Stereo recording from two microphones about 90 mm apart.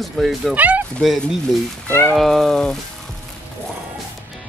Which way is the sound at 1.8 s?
20° left (ahead or behind).